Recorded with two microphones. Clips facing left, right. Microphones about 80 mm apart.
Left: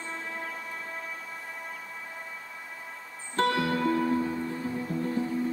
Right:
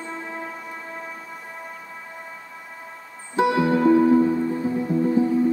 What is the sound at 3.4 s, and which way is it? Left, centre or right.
Music, centre.